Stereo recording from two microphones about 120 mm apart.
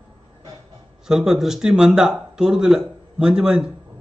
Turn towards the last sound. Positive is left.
turn(degrees=-10)  # may be behind; listen again after turning